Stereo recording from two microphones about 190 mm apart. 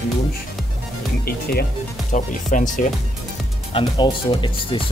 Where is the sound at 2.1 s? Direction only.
40° left (ahead or behind).